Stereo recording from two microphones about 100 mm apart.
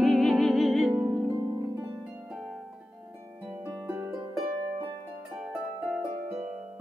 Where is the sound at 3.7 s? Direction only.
25° right (ahead or behind).